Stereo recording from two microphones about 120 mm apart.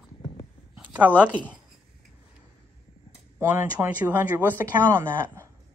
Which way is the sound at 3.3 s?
20° right (ahead or behind).